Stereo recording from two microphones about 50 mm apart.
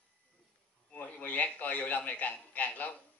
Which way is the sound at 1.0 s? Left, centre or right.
Left.